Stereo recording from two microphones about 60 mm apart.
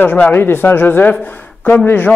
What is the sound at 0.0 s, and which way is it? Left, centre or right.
Speech, left.